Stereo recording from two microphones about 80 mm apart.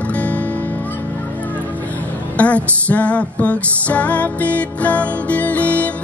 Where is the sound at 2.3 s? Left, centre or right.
Centre.